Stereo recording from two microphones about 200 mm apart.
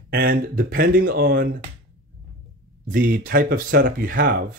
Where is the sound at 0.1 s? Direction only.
50° right (ahead or behind).